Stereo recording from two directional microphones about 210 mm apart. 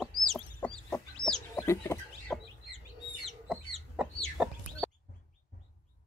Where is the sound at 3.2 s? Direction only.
Centre (ahead or behind).